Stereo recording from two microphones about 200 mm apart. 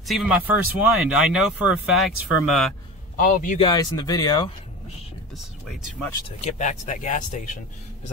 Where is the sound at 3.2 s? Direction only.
40° left (ahead or behind).